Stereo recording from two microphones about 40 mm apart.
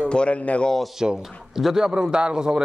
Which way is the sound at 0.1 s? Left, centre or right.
Left.